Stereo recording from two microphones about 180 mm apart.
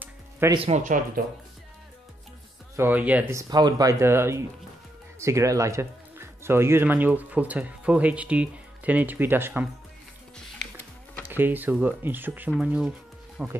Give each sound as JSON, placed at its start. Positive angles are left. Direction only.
{"t": 0.0, "sound": "music", "side_deg": -15}
{"t": 0.6, "sound": "speech", "side_deg": -40}
{"t": 2.7, "sound": "speech", "side_deg": -10}
{"t": 11.2, "sound": "speech", "side_deg": -10}